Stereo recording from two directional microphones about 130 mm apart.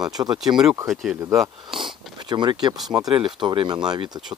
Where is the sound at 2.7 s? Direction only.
Centre (ahead or behind).